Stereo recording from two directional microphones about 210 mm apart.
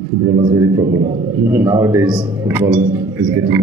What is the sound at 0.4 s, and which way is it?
A man's voice, 20° right (ahead or behind).